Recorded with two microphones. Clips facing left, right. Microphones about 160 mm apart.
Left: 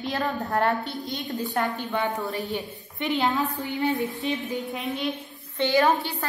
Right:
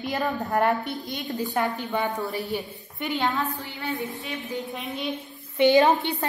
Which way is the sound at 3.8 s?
20° left (ahead or behind).